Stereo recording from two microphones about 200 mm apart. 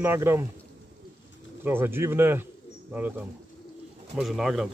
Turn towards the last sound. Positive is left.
turn(degrees=0)  # may be behind; listen again after turning